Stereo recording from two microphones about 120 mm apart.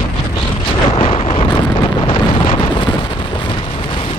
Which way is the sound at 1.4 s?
40° left (ahead or behind).